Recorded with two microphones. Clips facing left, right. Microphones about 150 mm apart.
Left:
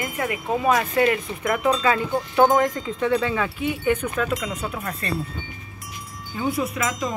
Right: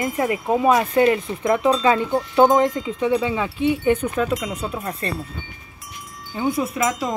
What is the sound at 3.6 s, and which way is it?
Speech, 30° right (ahead or behind).